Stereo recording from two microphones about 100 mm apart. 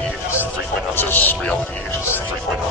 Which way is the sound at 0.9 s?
20° left (ahead or behind).